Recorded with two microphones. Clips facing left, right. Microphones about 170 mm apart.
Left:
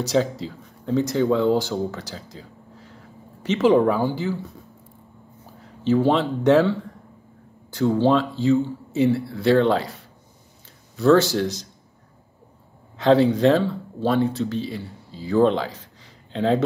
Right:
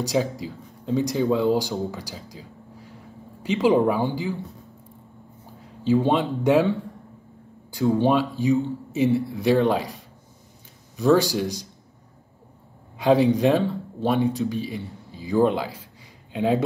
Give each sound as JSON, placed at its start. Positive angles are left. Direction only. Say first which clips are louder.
{"t": 0.0, "sound": "speech", "louder": "left 2 dB", "side_deg": -15}
{"t": 3.4, "sound": "speech", "louder": "left 2 dB", "side_deg": -15}
{"t": 5.9, "sound": "speech", "louder": "left 1 dB", "side_deg": -15}
{"t": 12.9, "sound": "speech", "louder": "left 1 dB", "side_deg": -10}
{"t": 15.0, "sound": "a sound", "louder": "left 2 dB", "side_deg": -15}